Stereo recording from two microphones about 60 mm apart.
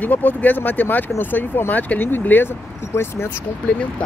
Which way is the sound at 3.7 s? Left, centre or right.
Centre.